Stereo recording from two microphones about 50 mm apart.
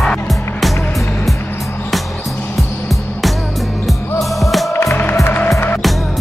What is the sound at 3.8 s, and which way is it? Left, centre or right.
Music, centre.